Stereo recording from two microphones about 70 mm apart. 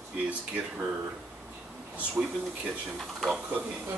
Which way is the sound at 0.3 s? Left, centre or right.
Centre.